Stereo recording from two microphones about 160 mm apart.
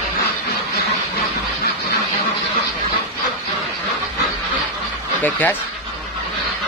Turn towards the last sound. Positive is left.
turn(degrees=10)  # may be behind; listen again after turning